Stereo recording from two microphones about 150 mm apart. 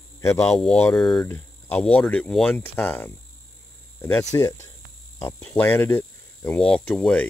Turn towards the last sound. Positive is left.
turn(degrees=5)  # may be behind; listen again after turning